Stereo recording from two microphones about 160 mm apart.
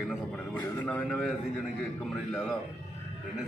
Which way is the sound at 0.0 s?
5° left (ahead or behind).